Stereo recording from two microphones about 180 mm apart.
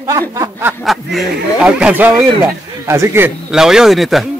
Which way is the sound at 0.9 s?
Centre (ahead or behind).